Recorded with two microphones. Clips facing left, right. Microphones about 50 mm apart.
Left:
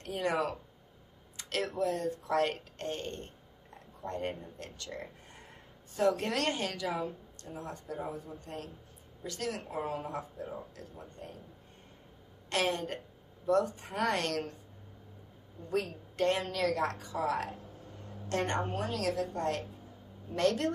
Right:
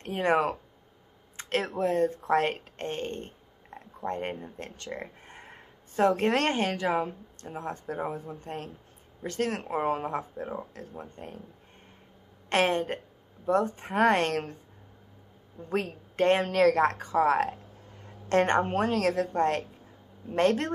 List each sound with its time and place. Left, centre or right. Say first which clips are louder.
0.0 s speech: right 6 dB; right
12.4 s speech: right 6 dB; right
15.7 s a woman's voice: right 3 dB; right